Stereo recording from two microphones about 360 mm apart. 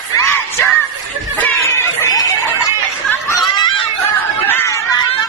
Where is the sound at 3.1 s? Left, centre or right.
Centre.